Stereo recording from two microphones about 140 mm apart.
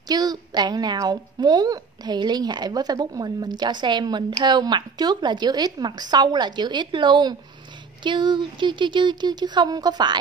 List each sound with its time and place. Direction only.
0.1 s a woman's voice: 30° right (ahead or behind)